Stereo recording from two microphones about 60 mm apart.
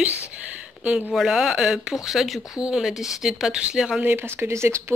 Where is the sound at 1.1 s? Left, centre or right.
Centre.